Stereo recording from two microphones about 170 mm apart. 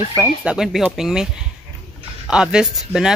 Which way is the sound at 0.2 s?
5° right (ahead or behind).